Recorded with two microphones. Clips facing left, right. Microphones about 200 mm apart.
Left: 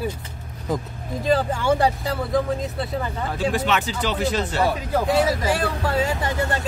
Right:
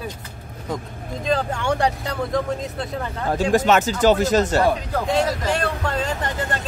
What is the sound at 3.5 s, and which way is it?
Speech, 45° right (ahead or behind).